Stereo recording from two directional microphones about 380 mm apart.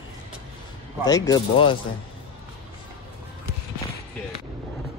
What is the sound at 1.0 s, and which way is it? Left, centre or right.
Speech, centre.